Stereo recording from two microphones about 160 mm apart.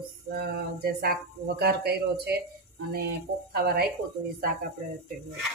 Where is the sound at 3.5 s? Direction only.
70° right (ahead or behind).